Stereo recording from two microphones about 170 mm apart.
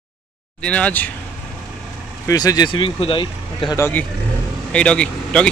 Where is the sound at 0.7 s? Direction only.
10° left (ahead or behind).